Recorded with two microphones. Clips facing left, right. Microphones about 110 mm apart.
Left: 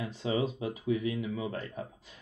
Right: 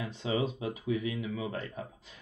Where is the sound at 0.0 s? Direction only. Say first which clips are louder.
Left 1 dB; 35° left (ahead or behind).